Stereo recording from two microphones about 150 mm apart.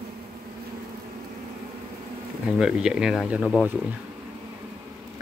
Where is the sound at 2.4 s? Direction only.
5° right (ahead or behind).